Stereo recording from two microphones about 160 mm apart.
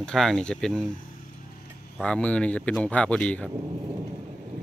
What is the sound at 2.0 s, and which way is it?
Speech, 5° left (ahead or behind).